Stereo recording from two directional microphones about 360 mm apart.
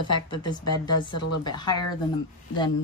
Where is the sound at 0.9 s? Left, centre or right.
Left.